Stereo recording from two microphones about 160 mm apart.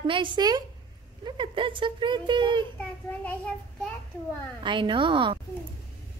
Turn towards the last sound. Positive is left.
turn(degrees=-30)  # may be behind; listen again after turning